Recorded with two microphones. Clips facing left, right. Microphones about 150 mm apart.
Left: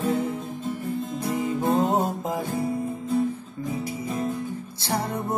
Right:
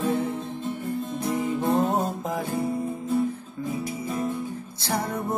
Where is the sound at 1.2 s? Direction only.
10° left (ahead or behind).